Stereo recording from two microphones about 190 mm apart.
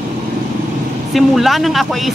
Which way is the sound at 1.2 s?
Centre (ahead or behind).